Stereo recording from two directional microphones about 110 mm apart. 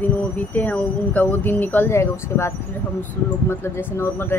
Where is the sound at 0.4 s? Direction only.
10° left (ahead or behind).